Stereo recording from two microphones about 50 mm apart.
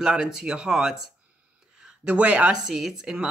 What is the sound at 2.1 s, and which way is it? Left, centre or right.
Speech, right.